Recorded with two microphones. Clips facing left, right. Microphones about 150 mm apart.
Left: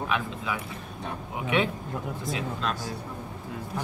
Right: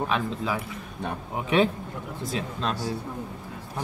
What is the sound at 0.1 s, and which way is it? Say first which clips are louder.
Speech: right 3 dB; 35° right (ahead or behind).